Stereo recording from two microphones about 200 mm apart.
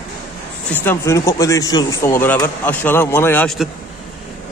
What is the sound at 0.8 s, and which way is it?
Speech, 15° left (ahead or behind).